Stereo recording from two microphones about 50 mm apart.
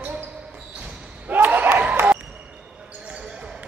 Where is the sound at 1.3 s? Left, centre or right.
Right.